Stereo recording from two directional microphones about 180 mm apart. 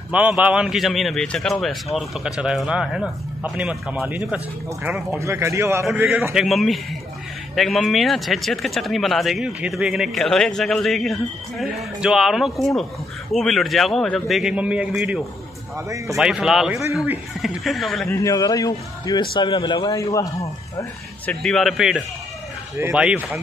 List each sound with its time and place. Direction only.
0.1 s speech: 5° right (ahead or behind)
5.2 s speech: 15° right (ahead or behind); by 18.1 s centre (ahead or behind)
18.1 s speech: 20° left (ahead or behind)
21.3 s speech: 5° left (ahead or behind)